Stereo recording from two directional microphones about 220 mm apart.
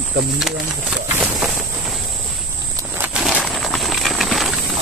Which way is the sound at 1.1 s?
5° right (ahead or behind).